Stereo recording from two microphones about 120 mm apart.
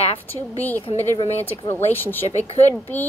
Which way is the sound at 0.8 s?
50° left (ahead or behind).